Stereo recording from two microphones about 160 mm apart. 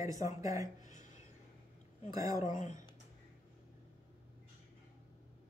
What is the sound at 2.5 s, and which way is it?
Speech, 55° left (ahead or behind).